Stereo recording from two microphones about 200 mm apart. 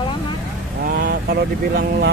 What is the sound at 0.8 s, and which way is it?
Speech, 50° right (ahead or behind).